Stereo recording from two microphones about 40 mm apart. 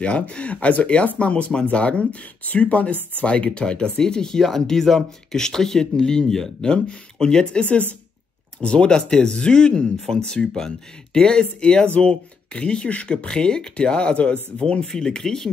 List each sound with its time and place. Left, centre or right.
0.0 s speech: left
9.9 s speech: centre